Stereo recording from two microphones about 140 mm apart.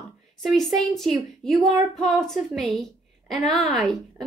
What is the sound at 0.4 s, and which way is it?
Speech, centre (ahead or behind).